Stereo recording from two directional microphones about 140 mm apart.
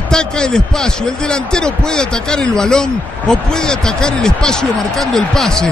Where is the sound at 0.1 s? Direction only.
5° left (ahead or behind).